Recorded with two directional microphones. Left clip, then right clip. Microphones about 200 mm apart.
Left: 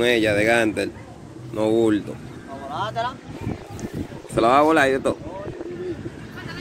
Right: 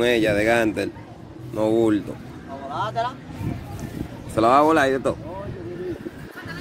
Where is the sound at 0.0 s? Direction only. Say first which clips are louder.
Left 1 dB; 5° right (ahead or behind).